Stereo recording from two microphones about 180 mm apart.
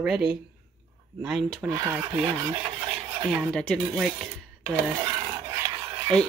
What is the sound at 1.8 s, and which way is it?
Speech, 10° right (ahead or behind).